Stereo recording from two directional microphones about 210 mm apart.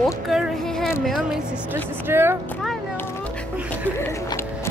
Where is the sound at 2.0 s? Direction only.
10° right (ahead or behind).